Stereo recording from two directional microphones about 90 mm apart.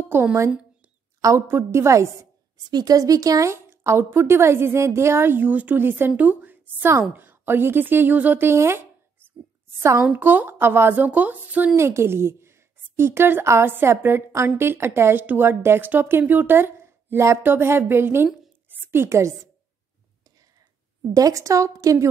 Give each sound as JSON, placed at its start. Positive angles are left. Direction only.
{"t": 0.1, "sound": "a woman's voice", "side_deg": -25}
{"t": 2.5, "sound": "a woman's voice", "side_deg": -45}
{"t": 11.7, "sound": "a woman's voice", "side_deg": -30}
{"t": 21.1, "sound": "a woman's voice", "side_deg": -40}